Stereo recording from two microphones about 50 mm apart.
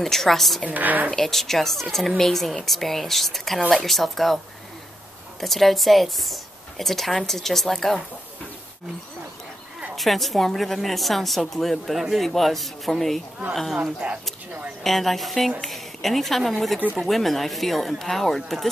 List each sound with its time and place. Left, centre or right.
0.0 s a woman's voice: centre
0.7 s a woman's voice: right
1.1 s a woman's voice: centre
5.4 s a woman's voice: centre
9.9 s a woman's voice: centre
14.0 s speech: right
14.8 s a woman's voice: centre